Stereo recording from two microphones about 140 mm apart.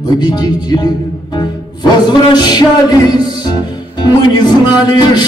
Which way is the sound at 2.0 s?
30° left (ahead or behind).